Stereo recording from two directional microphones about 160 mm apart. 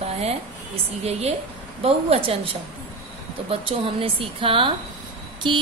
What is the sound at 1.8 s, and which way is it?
Speech, 35° right (ahead or behind).